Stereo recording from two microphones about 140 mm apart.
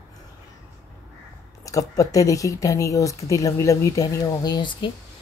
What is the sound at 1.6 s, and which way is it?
Speech, 25° left (ahead or behind).